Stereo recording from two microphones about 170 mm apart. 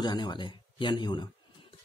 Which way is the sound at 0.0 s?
25° left (ahead or behind).